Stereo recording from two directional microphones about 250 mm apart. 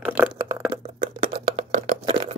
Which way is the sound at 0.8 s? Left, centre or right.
Right.